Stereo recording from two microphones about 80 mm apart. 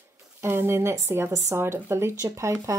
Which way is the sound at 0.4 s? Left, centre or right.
Right.